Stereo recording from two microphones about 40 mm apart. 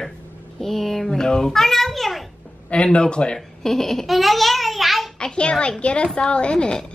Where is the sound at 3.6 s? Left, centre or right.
Centre.